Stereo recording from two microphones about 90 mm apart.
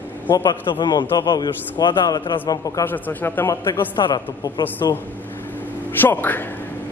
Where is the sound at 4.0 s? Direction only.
55° left (ahead or behind).